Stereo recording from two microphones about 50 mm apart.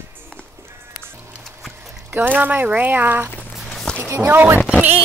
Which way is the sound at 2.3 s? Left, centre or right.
Right.